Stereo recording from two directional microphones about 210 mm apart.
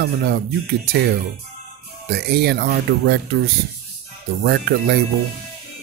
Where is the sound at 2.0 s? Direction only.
50° right (ahead or behind).